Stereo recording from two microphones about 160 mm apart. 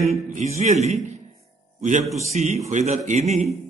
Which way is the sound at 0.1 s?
45° right (ahead or behind).